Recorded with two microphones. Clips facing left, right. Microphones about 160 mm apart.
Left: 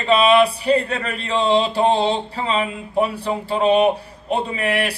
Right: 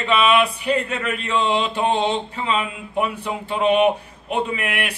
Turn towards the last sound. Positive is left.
turn(degrees=35)  # may be behind; listen again after turning